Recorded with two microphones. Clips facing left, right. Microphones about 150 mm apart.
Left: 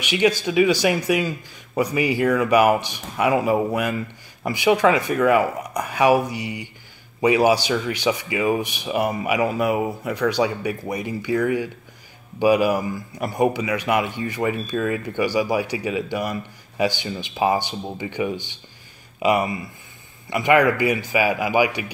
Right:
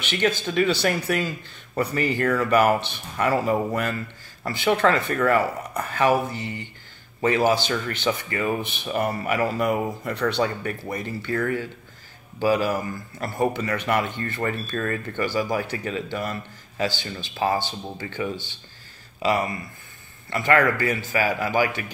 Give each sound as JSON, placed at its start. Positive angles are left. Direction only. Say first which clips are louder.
{"t": 0.0, "sound": "speech", "louder": "left 4 dB", "side_deg": 10}